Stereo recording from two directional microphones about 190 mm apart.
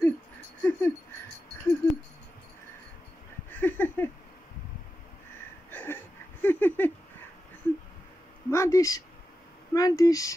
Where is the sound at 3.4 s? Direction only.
10° left (ahead or behind).